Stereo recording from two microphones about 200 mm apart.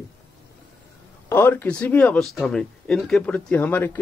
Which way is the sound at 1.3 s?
10° left (ahead or behind).